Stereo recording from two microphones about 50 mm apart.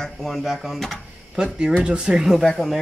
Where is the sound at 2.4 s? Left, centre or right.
Centre.